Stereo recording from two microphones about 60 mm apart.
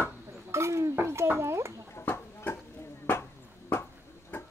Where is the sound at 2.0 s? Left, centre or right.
Left.